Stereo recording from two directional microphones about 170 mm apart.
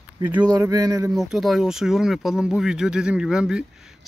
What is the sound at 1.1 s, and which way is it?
Speech, centre (ahead or behind).